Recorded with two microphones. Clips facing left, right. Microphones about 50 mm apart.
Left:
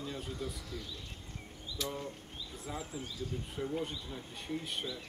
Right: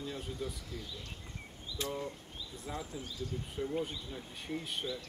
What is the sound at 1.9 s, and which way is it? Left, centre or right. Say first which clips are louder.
Speech: right 2 dB; centre.